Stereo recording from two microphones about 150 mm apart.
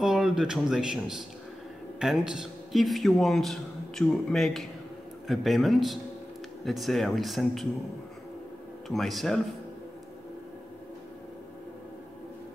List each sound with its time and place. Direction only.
0.0 s speech: centre (ahead or behind)
8.8 s speech: centre (ahead or behind)